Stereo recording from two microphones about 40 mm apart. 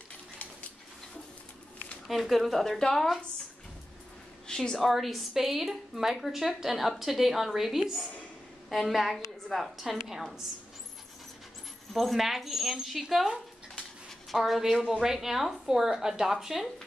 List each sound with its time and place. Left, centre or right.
2.0 s a woman's voice: centre
4.5 s a sound: centre
4.7 s a woman's voice: centre
11.9 s a woman's voice: centre